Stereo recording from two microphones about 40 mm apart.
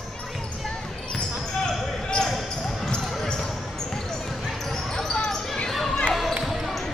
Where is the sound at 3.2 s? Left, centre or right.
Centre.